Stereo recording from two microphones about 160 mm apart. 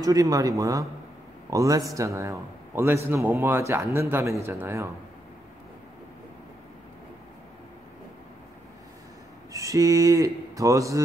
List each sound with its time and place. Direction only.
0.0 s a man's voice: 20° right (ahead or behind)
9.5 s speech: 20° right (ahead or behind)